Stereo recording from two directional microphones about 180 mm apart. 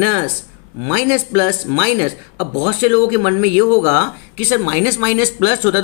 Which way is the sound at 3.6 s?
20° left (ahead or behind).